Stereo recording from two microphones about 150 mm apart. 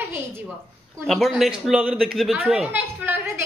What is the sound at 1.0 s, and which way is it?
A woman's voice, centre (ahead or behind).